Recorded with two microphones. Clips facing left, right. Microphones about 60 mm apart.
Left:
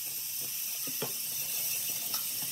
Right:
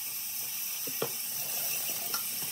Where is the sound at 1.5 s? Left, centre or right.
Right.